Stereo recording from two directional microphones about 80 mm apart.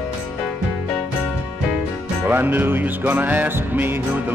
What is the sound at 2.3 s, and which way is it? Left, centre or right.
Music, right.